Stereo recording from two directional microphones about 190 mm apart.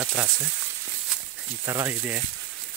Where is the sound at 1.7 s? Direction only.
15° right (ahead or behind).